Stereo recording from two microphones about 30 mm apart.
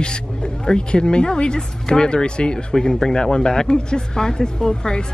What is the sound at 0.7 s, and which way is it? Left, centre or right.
Speech, left.